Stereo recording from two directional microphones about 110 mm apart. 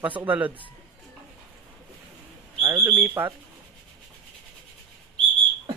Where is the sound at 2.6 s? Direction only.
35° right (ahead or behind).